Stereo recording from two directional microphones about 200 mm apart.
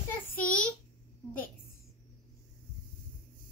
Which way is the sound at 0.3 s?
5° left (ahead or behind).